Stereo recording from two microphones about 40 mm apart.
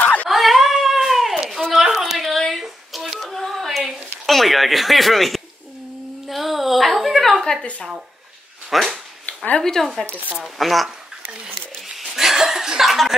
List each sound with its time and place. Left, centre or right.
0.0 s a sound: left
0.3 s cat: centre
1.3 s a sound: centre
2.2 s a sound: centre
8.7 s a woman's voice: centre
9.6 s speech: centre
10.4 s a woman's voice: centre
12.2 s chuckle: centre
12.8 s a woman's voice: centre